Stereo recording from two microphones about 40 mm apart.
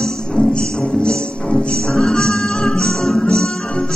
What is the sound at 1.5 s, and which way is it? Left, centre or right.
Music, centre.